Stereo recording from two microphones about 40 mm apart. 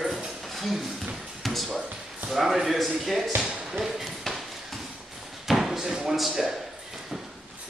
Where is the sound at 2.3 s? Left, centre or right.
Centre.